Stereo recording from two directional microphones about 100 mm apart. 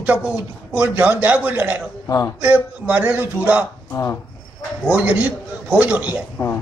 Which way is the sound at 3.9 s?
30° left (ahead or behind).